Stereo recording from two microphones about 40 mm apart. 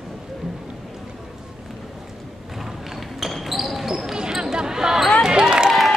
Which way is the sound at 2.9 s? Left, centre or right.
Centre.